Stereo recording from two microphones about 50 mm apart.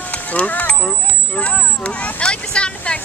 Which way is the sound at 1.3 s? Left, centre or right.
Left.